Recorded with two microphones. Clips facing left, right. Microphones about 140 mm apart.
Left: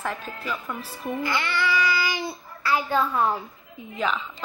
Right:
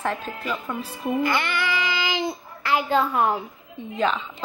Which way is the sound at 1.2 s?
55° right (ahead or behind).